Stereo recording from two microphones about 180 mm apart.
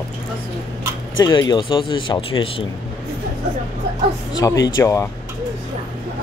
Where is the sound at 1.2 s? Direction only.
20° left (ahead or behind).